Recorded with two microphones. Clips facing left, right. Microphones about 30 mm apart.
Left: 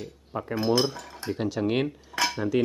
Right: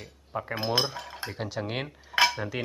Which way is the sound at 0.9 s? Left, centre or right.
Right.